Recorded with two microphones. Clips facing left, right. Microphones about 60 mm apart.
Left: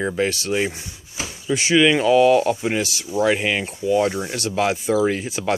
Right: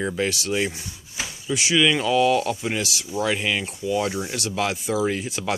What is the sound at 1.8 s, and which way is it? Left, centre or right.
Speech, centre.